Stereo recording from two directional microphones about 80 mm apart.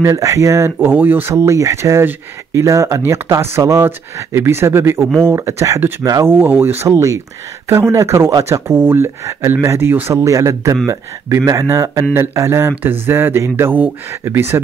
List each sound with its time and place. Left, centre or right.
0.0 s speech: right
1.3 s speech: right
6.9 s a man's voice: right
10.1 s a man's voice: right